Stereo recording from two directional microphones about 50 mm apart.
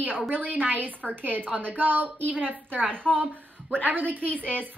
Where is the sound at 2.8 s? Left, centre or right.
Centre.